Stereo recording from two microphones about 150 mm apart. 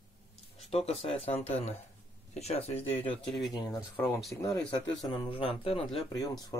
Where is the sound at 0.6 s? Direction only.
40° left (ahead or behind).